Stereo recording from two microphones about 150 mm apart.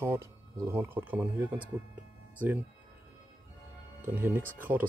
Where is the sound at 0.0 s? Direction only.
15° right (ahead or behind).